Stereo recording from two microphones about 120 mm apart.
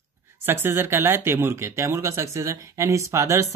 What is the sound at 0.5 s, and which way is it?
Speech, 20° right (ahead or behind).